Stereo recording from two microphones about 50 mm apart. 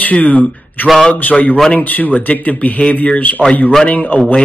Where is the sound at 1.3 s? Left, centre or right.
Left.